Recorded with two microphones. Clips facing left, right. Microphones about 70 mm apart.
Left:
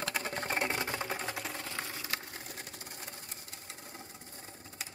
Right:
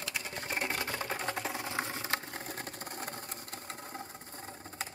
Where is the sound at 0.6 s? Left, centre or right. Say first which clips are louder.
Right 1 dB; centre.